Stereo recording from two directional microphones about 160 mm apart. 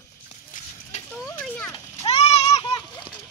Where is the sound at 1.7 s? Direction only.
40° left (ahead or behind).